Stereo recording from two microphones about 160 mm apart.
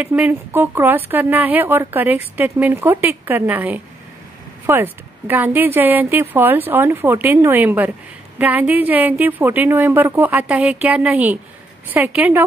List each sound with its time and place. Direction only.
0.0 s a woman's voice: 10° right (ahead or behind)